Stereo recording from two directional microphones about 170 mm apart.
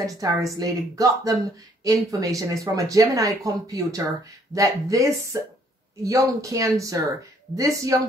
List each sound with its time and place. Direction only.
0.0 s speech: 20° right (ahead or behind)